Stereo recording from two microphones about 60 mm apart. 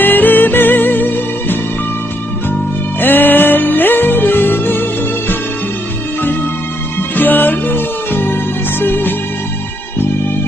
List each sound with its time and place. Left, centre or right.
0.0 s music: left
3.0 s music: left
7.0 s music: left